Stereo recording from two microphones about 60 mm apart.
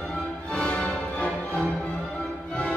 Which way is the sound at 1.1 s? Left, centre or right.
Left.